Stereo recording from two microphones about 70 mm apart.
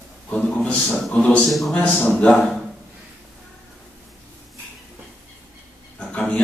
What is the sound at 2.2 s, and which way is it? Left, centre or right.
Speech, centre.